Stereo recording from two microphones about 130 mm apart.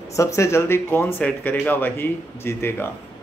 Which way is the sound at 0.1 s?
25° left (ahead or behind).